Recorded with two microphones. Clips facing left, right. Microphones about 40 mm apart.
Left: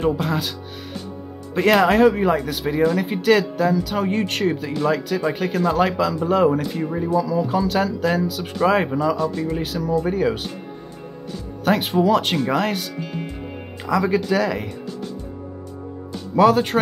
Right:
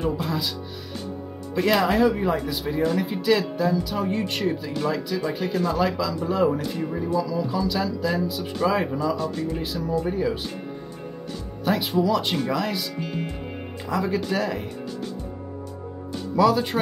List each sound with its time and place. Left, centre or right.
0.0 s speech: left
5.6 s speech: left
8.5 s speech: left
9.2 s speech: left
11.6 s speech: left
13.8 s speech: left
16.3 s speech: left